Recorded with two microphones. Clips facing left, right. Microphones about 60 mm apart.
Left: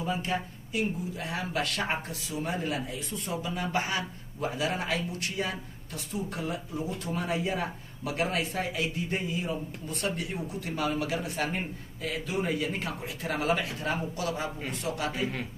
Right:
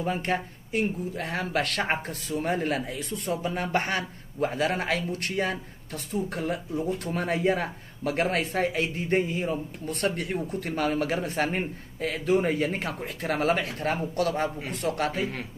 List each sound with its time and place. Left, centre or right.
0.0 s speech: right
9.8 s speech: right